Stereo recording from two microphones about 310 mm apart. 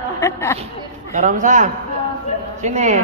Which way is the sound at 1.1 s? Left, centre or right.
Right.